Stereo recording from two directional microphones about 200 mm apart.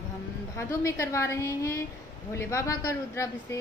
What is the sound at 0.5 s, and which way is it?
A woman's voice, 15° left (ahead or behind).